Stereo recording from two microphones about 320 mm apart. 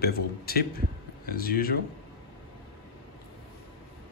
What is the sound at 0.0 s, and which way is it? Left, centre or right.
Speech, left.